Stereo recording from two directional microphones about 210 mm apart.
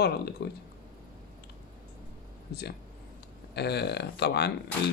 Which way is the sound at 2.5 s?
50° left (ahead or behind).